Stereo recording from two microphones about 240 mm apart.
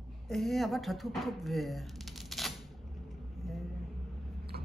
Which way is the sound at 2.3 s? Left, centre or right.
Centre.